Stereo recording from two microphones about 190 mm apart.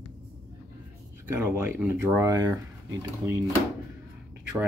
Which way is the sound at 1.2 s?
10° right (ahead or behind).